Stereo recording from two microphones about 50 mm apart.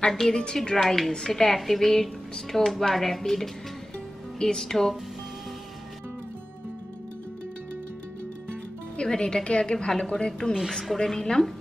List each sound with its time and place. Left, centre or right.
0.3 s speech: centre
0.7 s speech: centre
8.9 s a woman's voice: centre